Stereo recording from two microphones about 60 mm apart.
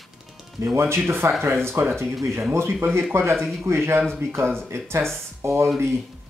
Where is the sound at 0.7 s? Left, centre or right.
Right.